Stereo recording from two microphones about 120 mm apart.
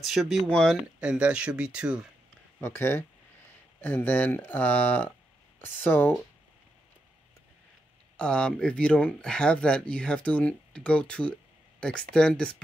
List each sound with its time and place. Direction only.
0.0 s speech: centre (ahead or behind)
1.0 s speech: 10° right (ahead or behind)
2.6 s speech: 20° left (ahead or behind)
8.2 s speech: 10° left (ahead or behind)